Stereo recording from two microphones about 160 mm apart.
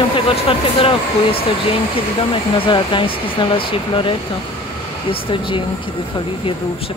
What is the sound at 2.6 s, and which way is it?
Speech, 30° left (ahead or behind).